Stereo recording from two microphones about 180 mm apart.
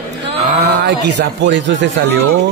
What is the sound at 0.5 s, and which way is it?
Speech, 70° right (ahead or behind).